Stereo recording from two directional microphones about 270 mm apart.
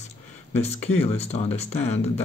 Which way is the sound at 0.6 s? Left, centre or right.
Left.